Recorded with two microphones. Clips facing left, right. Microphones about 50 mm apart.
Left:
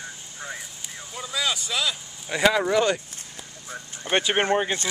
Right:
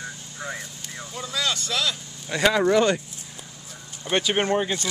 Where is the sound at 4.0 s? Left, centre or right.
Left.